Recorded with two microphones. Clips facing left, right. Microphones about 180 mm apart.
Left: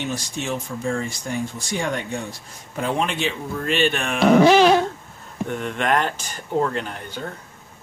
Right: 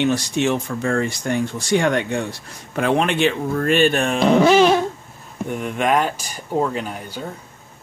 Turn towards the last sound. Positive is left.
turn(degrees=-10)  # may be behind; listen again after turning